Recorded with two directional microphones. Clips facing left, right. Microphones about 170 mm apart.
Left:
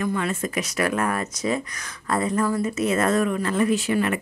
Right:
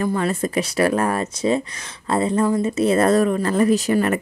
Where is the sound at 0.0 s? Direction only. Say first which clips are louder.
Right 4 dB; 35° right (ahead or behind).